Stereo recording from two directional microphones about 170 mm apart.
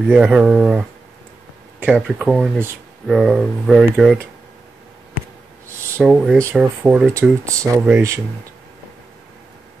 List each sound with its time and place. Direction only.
0.1 s speech: 5° right (ahead or behind)
1.9 s speech: centre (ahead or behind)
5.9 s speech: 5° right (ahead or behind)
7.2 s speech: 15° right (ahead or behind)